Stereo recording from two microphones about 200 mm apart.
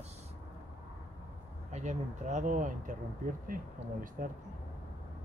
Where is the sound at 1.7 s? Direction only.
35° right (ahead or behind).